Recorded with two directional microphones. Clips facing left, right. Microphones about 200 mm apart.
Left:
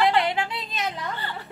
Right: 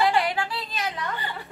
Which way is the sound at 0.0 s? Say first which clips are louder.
Left 1 dB; 20° left (ahead or behind).